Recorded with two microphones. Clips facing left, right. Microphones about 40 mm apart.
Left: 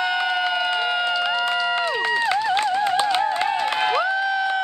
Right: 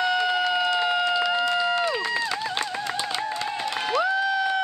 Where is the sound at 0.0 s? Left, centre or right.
Centre.